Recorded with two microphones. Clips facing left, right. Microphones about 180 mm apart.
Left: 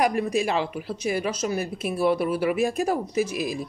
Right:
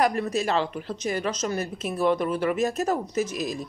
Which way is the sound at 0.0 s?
10° left (ahead or behind).